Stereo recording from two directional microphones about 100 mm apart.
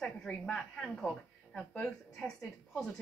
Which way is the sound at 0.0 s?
10° left (ahead or behind).